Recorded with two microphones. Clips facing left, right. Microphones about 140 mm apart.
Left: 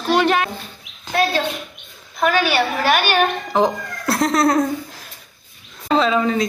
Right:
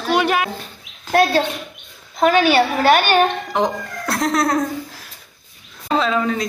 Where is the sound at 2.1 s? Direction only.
25° right (ahead or behind).